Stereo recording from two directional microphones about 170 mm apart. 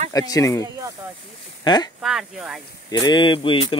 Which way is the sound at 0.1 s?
20° left (ahead or behind).